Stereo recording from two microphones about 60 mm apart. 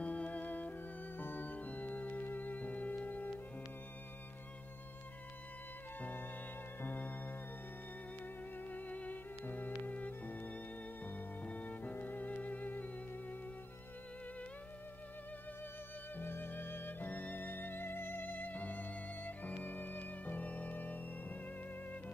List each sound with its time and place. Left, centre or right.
0.0 s music: left
5.9 s music: left
8.6 s music: left
16.2 s music: left